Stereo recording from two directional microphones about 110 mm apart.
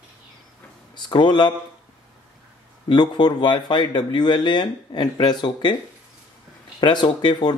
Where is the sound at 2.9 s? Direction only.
40° left (ahead or behind).